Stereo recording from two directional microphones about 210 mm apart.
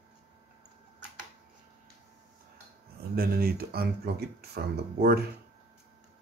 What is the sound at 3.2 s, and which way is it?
Speech, 45° right (ahead or behind).